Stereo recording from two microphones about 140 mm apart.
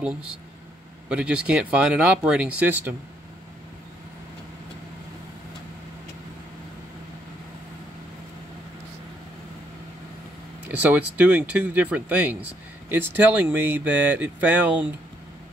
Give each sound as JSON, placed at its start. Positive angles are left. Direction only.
{"t": 1.0, "sound": "speech", "side_deg": -5}
{"t": 10.7, "sound": "speech", "side_deg": -10}